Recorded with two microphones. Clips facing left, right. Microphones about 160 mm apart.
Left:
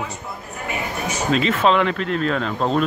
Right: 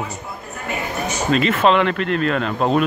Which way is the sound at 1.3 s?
Centre (ahead or behind).